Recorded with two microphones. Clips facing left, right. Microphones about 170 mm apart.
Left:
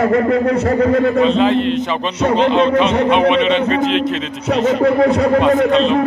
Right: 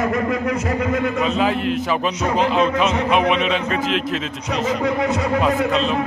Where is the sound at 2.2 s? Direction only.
30° left (ahead or behind).